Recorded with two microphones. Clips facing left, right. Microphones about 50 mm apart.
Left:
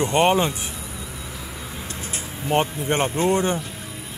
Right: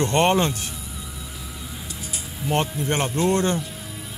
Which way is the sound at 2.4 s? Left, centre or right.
Centre.